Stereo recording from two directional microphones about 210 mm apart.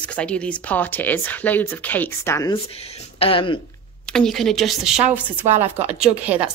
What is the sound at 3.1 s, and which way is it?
Speech, 25° left (ahead or behind).